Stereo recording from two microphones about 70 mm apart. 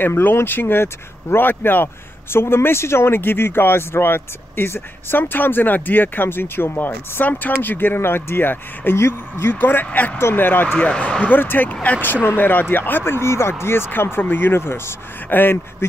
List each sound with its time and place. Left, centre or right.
0.0 s speech: left
10.8 s speech: centre
11.3 s speech: left